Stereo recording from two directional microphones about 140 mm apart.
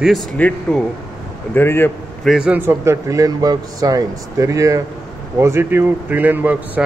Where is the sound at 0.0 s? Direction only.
Centre (ahead or behind); by 1.9 s 15° left (ahead or behind).